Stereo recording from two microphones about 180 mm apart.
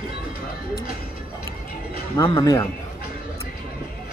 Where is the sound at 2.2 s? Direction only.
20° left (ahead or behind).